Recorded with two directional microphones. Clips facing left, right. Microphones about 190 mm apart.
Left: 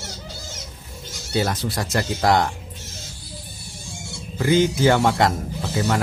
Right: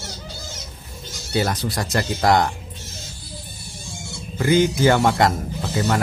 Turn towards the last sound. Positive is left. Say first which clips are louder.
# right 1 dB
turn(degrees=0)  # may be behind; listen again after turning